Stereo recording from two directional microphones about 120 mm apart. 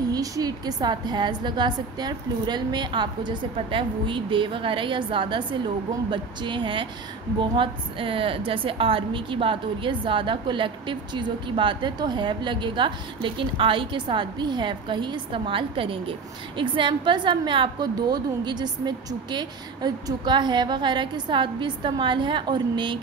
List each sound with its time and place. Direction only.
0.1 s a woman's voice: 30° right (ahead or behind)